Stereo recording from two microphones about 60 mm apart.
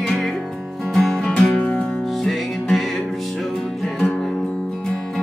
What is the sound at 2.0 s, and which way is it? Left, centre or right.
Music, centre.